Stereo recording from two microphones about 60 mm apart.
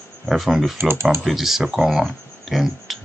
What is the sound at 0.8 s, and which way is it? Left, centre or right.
Speech, right.